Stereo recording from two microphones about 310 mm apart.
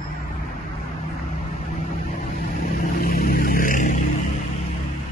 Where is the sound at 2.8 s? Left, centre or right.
Left.